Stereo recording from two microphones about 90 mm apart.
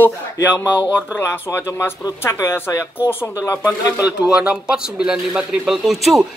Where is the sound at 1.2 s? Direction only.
30° left (ahead or behind).